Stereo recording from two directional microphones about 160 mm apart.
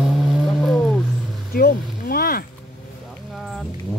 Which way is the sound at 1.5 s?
70° left (ahead or behind).